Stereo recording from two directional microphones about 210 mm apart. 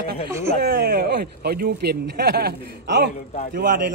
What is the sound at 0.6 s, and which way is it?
Speech, 50° right (ahead or behind).